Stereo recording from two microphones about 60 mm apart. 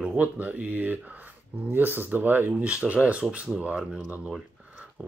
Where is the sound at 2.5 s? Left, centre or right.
Centre.